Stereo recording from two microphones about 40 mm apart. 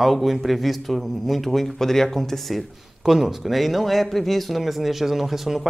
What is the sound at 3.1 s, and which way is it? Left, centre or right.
Speech, centre.